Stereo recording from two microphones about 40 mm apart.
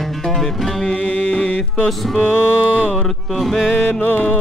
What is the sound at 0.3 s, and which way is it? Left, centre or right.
Music, centre.